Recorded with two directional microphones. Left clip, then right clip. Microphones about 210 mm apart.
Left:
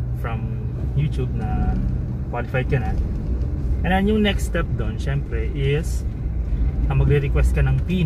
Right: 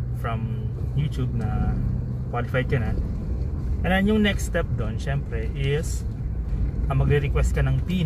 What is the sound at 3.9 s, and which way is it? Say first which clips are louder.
Speech: left 2 dB; 15° right (ahead or behind).